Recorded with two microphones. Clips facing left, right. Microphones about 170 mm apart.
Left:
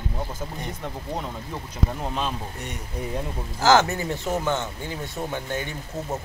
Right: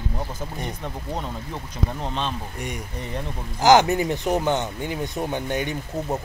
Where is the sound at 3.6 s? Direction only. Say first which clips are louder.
Right 3 dB; 15° right (ahead or behind).